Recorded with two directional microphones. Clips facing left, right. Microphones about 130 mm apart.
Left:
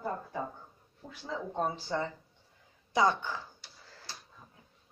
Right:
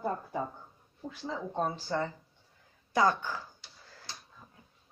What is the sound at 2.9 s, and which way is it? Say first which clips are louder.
Speech: even; 20° left (ahead or behind).